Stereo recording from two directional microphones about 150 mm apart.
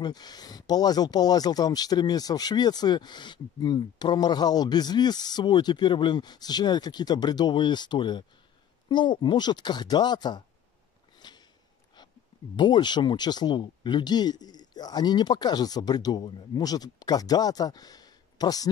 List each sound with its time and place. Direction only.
0.0 s speech: 25° left (ahead or behind)
11.1 s a sound: 30° left (ahead or behind)
12.5 s speech: 30° left (ahead or behind)